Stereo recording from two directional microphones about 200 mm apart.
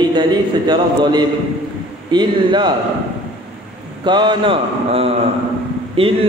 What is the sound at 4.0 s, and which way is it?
A man's voice, 20° right (ahead or behind).